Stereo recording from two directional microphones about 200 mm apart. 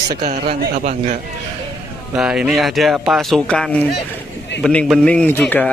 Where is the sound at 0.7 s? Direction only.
40° right (ahead or behind).